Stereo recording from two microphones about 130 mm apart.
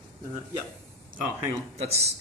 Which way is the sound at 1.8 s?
55° right (ahead or behind).